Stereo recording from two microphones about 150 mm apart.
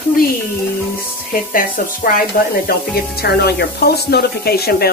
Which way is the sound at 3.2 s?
90° left.